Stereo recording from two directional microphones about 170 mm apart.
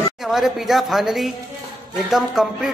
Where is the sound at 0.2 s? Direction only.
Centre (ahead or behind).